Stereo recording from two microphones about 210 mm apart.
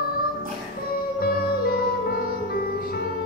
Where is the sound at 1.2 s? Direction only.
45° left (ahead or behind).